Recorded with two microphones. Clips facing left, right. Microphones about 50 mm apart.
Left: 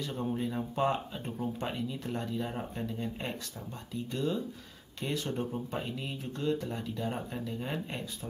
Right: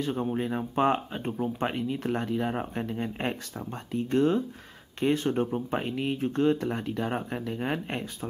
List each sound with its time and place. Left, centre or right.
0.0 s speech: right
0.4 s speech: right